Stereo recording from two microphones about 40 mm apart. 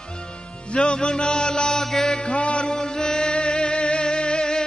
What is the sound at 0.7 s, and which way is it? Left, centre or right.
Music, left.